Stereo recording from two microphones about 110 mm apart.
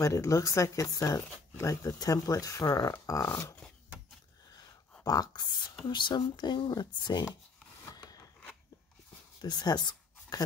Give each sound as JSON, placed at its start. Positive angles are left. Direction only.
{"t": 0.0, "sound": "speech", "side_deg": 30}
{"t": 5.0, "sound": "speech", "side_deg": 35}
{"t": 9.4, "sound": "speech", "side_deg": 40}